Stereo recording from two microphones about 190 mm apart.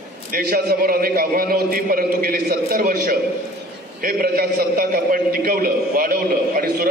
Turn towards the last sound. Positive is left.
turn(degrees=-50)  # may be behind; listen again after turning